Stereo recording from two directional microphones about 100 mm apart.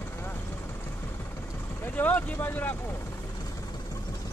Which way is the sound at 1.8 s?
15° left (ahead or behind).